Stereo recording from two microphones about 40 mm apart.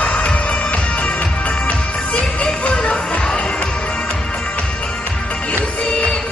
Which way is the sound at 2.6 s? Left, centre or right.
Left.